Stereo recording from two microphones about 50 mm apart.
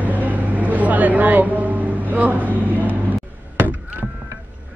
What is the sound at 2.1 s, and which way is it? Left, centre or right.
Speech, right.